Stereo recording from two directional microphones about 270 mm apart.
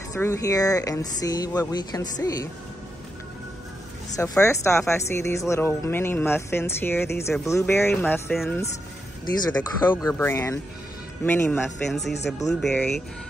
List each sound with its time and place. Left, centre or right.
0.1 s speech: centre
4.2 s speech: centre
9.8 s speech: centre
12.0 s speech: left
12.6 s speech: centre